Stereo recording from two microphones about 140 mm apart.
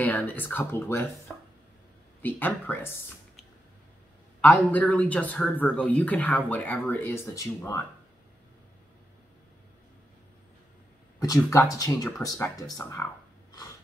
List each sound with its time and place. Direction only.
0.0 s speech: 10° left (ahead or behind)
1.3 s a sound: 5° left (ahead or behind)
2.2 s speech: 15° left (ahead or behind)
4.4 s speech: 10° left (ahead or behind)
11.1 s speech: 25° left (ahead or behind)